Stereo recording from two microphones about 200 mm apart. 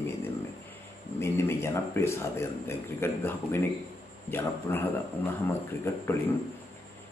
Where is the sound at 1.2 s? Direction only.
10° left (ahead or behind).